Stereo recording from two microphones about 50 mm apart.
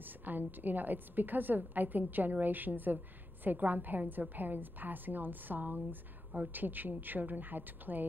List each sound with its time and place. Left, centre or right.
0.0 s a woman's voice: right